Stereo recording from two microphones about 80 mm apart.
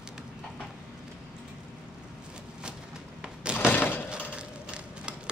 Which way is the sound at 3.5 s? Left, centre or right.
Left.